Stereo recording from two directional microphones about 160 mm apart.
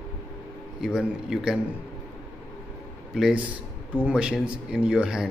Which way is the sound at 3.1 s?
5° right (ahead or behind).